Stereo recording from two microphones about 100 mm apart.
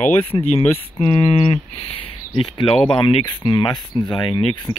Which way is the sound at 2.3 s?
55° left (ahead or behind).